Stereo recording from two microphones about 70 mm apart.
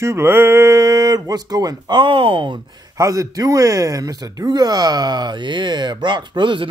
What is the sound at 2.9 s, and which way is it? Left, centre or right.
Speech, right.